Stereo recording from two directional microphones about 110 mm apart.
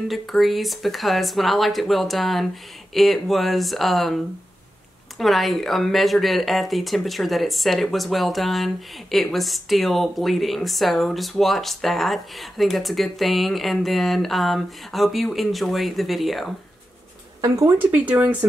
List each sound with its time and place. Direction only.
0.1 s speech: centre (ahead or behind)
5.2 s speech: centre (ahead or behind)
17.4 s speech: 25° right (ahead or behind)
17.7 s speech: 15° right (ahead or behind)